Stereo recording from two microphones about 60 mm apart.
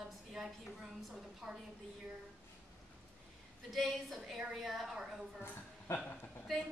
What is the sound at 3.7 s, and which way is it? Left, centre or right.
A woman's voice, centre.